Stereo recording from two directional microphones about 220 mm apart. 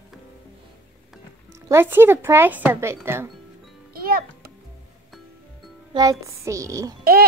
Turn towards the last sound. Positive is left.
turn(degrees=-15)  # may be behind; listen again after turning